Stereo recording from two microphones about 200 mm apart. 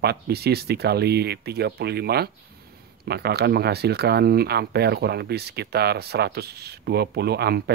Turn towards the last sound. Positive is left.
turn(degrees=-55)  # may be behind; listen again after turning